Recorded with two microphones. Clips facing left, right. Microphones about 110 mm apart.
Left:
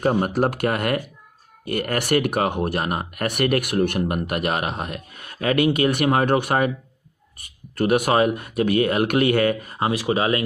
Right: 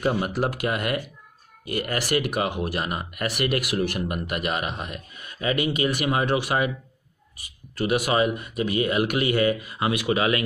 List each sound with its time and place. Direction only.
0.0 s speech: 50° left (ahead or behind)
9.8 s speech: 35° left (ahead or behind)